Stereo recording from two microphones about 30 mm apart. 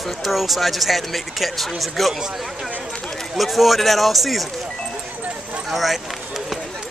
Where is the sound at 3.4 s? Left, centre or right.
Centre.